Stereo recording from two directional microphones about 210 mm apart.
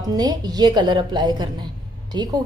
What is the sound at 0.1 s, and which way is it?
A woman's voice, 20° right (ahead or behind).